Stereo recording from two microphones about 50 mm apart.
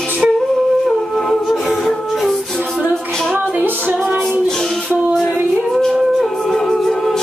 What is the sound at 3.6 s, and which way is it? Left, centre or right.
Music, right.